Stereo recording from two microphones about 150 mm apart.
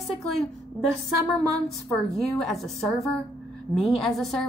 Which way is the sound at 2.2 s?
Centre (ahead or behind).